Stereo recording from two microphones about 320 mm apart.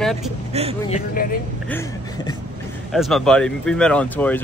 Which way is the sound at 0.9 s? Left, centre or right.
Centre.